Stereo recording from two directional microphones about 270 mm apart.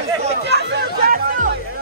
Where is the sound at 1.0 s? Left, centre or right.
Right.